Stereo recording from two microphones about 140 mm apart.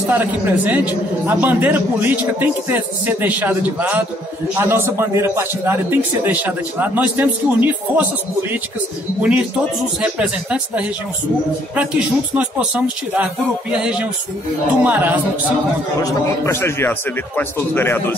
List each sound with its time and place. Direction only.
0.1 s a man's voice: 10° right (ahead or behind)
9.2 s a man's voice: 5° right (ahead or behind)
12.4 s a man's voice: 10° right (ahead or behind)
16.0 s speech: 20° left (ahead or behind)